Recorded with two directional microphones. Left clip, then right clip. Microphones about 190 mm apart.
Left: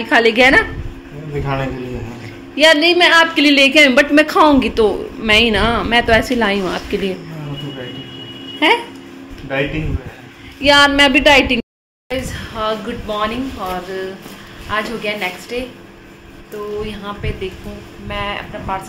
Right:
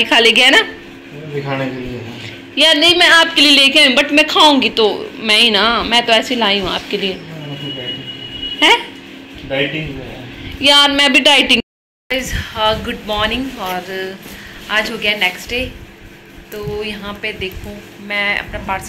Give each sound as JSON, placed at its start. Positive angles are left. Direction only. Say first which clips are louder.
{"t": 0.0, "sound": "a woman's voice", "louder": "right 2 dB", "side_deg": 5}
{"t": 2.5, "sound": "a woman's voice", "louder": "even", "side_deg": 10}
{"t": 8.5, "sound": "speech", "louder": "right 3 dB", "side_deg": 10}
{"t": 10.6, "sound": "a woman's voice", "louder": "even", "side_deg": 15}
{"t": 11.1, "sound": "speech", "louder": "right 1 dB", "side_deg": -5}
{"t": 16.8, "sound": "speech", "louder": "right 3 dB", "side_deg": -5}